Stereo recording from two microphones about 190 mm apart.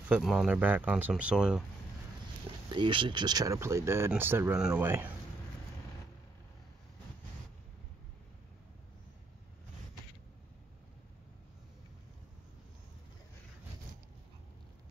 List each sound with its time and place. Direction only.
0.1 s speech: centre (ahead or behind)
2.7 s speech: 25° right (ahead or behind)